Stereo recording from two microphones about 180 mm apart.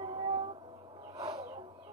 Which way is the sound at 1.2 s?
25° right (ahead or behind).